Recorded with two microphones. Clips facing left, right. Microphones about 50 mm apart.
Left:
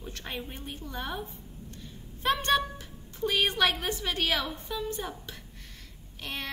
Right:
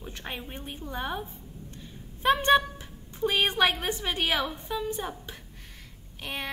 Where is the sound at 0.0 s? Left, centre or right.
Centre.